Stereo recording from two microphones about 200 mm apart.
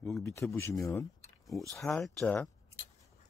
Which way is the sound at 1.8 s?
Centre (ahead or behind).